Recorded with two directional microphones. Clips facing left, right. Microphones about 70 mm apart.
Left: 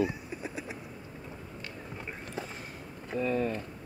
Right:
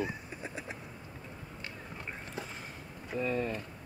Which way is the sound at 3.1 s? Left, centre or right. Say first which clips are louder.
Left 3 dB; centre.